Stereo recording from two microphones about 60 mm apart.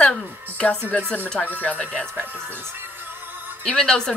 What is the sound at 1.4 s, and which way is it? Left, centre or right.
Speech, left.